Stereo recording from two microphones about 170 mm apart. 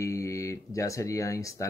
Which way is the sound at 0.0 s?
20° left (ahead or behind).